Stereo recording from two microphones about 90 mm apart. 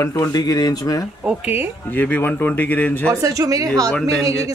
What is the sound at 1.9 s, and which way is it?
Speech, 20° left (ahead or behind).